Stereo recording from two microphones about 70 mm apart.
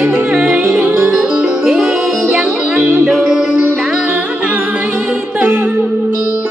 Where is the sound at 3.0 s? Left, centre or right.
Centre.